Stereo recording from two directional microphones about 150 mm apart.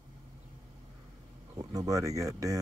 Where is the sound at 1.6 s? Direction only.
25° right (ahead or behind).